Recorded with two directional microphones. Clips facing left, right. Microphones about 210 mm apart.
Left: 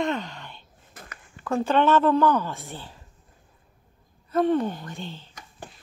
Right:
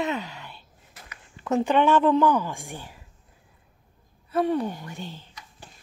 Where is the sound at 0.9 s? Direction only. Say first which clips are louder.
Left 3 dB; 50° left (ahead or behind).